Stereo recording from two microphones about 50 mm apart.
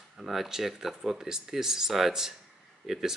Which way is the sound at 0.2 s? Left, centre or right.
Centre.